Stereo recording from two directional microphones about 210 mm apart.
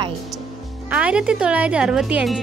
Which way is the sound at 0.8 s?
5° right (ahead or behind).